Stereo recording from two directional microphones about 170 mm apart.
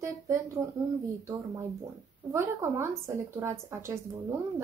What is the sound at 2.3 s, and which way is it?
Speech, 15° right (ahead or behind).